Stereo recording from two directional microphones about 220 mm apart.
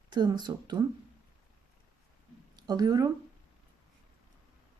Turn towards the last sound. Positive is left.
turn(degrees=-15)  # may be behind; listen again after turning